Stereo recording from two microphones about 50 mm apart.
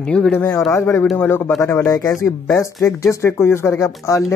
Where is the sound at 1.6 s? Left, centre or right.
Left.